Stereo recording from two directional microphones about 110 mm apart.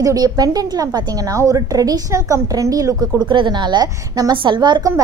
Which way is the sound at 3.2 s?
45° right (ahead or behind).